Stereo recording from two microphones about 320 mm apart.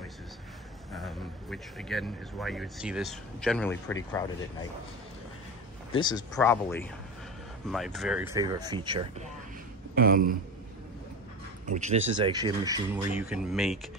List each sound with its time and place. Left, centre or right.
0.9 s speech: centre
5.9 s speech: centre
9.9 s speech: right
11.6 s speech: right; by 13.7 s centre